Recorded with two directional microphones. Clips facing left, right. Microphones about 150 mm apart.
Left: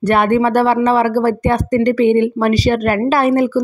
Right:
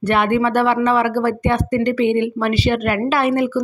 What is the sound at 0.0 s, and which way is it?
A woman's voice, 40° left (ahead or behind).